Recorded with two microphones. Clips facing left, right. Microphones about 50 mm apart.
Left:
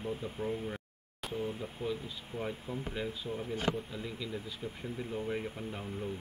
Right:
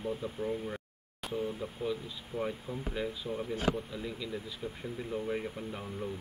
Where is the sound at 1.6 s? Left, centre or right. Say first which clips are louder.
Right 2 dB; left.